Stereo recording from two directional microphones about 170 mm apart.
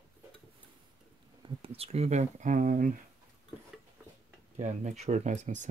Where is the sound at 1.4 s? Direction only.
35° right (ahead or behind); by 2.9 s 50° right (ahead or behind).